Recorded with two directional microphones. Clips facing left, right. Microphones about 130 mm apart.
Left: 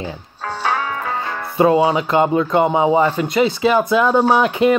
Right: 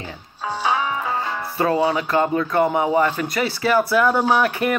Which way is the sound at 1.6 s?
20° left (ahead or behind).